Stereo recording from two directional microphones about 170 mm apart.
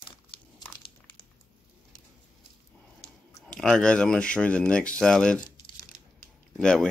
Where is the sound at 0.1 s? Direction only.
25° left (ahead or behind).